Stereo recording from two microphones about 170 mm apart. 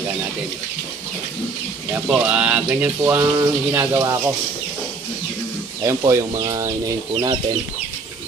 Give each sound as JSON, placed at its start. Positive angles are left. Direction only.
{"t": 2.0, "sound": "speech", "side_deg": -5}
{"t": 5.9, "sound": "speech", "side_deg": -20}